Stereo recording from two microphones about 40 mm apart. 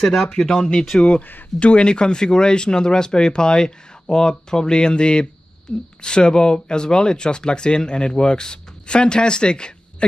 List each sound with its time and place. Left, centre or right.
0.3 s speech: centre